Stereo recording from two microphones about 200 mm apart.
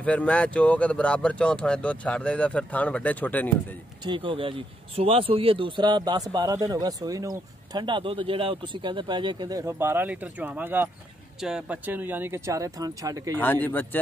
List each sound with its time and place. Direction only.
0.0 s speech: 5° left (ahead or behind)
4.0 s speech: 25° right (ahead or behind)
13.4 s speech: 10° left (ahead or behind)